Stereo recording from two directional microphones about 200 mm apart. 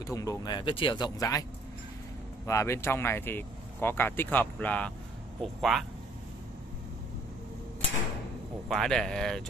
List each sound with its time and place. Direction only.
0.0 s speech: 15° left (ahead or behind)
2.4 s speech: 15° left (ahead or behind)
8.6 s speech: centre (ahead or behind)